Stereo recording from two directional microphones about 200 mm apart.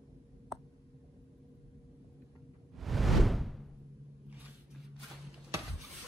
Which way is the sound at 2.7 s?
Centre (ahead or behind).